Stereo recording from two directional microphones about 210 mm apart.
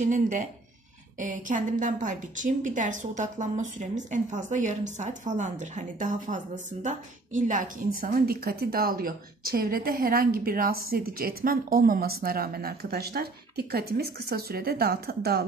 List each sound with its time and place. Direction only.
0.0 s a woman's voice: 35° right (ahead or behind)